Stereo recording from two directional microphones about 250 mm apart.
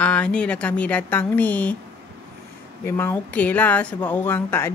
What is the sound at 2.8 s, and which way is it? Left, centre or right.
Speech, centre.